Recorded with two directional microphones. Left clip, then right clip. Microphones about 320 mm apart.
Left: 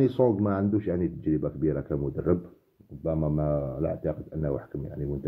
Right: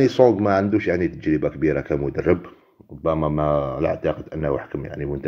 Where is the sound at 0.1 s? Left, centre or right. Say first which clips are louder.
Right 9 dB; centre.